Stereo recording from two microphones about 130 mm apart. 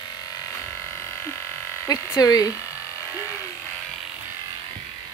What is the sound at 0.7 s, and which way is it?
Electric shaver, 20° left (ahead or behind).